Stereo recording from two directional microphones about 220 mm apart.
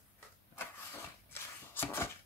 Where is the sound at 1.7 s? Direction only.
10° left (ahead or behind).